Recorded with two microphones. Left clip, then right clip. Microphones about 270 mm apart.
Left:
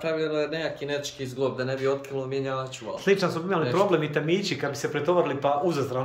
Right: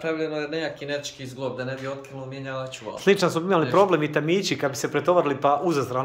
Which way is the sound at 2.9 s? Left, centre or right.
Right.